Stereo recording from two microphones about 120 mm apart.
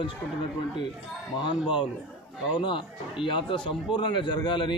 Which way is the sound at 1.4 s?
45° left (ahead or behind).